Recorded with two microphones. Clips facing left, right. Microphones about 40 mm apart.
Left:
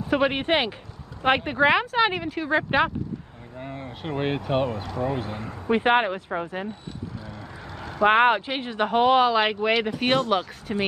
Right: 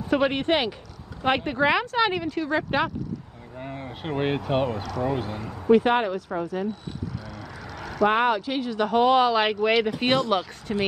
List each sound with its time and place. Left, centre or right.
0.1 s speech: centre
3.5 s a sound: centre
3.8 s speech: centre
5.4 s speech: left
8.0 s speech: left; by 10.8 s centre